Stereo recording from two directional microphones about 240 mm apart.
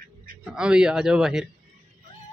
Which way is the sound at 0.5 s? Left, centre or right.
Centre.